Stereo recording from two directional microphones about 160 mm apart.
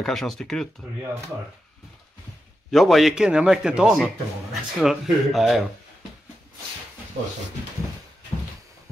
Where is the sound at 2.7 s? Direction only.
Centre (ahead or behind).